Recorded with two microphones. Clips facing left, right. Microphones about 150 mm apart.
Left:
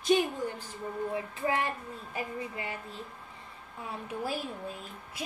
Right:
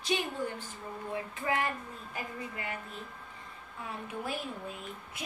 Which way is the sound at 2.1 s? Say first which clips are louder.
Left 4 dB; 30° left (ahead or behind).